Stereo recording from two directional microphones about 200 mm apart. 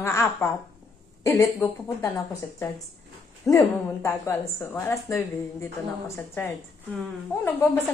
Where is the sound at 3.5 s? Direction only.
15° left (ahead or behind).